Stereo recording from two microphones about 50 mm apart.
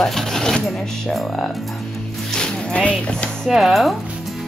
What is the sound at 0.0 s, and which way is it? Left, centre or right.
Speech, centre.